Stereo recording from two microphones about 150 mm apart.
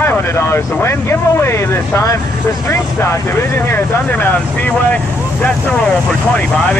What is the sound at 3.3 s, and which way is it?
Speech, 15° left (ahead or behind).